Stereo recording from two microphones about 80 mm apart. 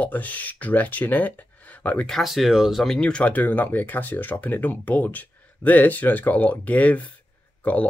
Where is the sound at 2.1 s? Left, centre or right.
Centre.